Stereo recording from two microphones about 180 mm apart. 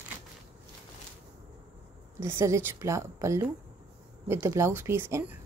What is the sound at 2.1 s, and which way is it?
A woman's voice, 15° right (ahead or behind).